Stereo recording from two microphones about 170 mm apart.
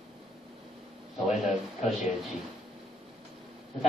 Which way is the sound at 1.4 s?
Centre (ahead or behind).